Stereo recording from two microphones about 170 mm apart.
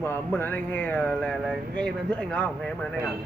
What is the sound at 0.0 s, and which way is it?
Speech, 10° left (ahead or behind).